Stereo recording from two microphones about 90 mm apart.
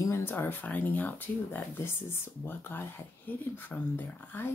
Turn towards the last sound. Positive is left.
turn(degrees=20)  # may be behind; listen again after turning